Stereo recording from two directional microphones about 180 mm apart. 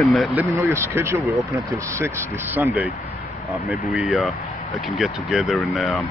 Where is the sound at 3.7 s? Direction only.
Centre (ahead or behind).